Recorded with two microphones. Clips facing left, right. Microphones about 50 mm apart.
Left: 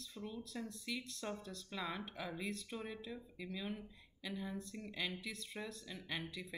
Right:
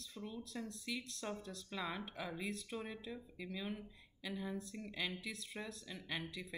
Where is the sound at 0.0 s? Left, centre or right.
Centre.